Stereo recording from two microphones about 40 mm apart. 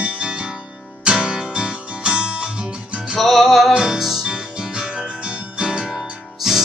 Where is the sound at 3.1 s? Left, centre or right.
Centre.